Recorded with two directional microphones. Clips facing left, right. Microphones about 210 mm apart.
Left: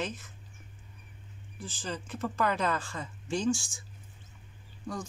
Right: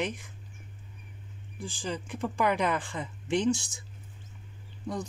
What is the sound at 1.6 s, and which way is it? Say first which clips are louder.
A woman's voice: right 3 dB; 15° right (ahead or behind).